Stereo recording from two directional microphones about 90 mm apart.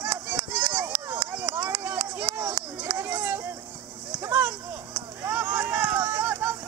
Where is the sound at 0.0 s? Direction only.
20° right (ahead or behind).